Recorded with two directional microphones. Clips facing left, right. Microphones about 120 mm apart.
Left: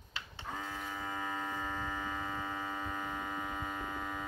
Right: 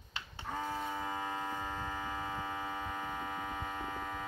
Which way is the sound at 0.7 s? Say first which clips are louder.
Right 5 dB; 30° right (ahead or behind).